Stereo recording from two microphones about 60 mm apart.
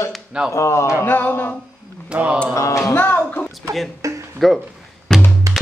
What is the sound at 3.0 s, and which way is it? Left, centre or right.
Music, left.